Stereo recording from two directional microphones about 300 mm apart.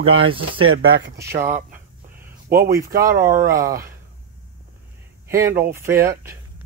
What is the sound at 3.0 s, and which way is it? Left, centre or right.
Speech, centre.